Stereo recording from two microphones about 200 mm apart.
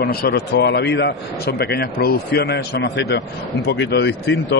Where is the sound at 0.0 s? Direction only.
50° left (ahead or behind).